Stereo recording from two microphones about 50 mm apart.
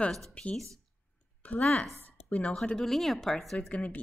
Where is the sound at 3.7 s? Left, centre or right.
Left.